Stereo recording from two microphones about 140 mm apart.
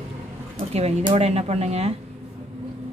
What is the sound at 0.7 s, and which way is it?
Speech, 50° right (ahead or behind).